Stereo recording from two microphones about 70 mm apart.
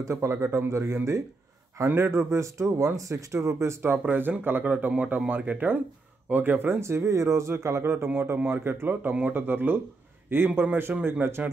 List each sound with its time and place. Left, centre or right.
0.0 s speech: right
2.0 s speech: right
4.1 s speech: right